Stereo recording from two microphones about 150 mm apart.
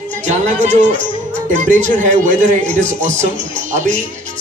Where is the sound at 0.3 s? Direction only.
50° right (ahead or behind).